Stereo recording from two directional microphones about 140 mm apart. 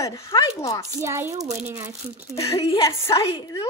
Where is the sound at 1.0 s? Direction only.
20° right (ahead or behind).